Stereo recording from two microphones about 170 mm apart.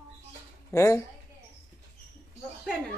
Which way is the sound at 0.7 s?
15° left (ahead or behind).